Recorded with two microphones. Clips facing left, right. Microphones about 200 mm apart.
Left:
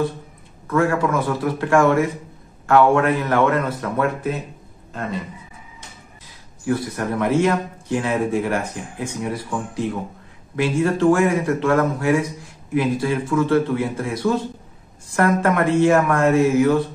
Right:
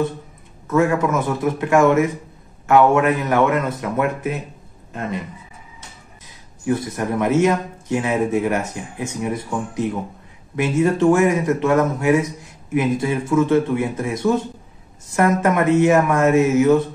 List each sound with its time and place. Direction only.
0.7 s a man's voice: 20° right (ahead or behind)
6.6 s a man's voice: 20° right (ahead or behind)